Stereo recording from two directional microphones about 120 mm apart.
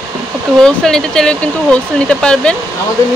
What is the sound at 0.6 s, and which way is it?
Speech, 5° left (ahead or behind).